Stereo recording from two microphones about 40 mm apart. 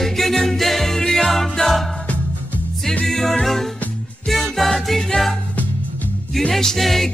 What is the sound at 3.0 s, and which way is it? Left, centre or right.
Music, centre.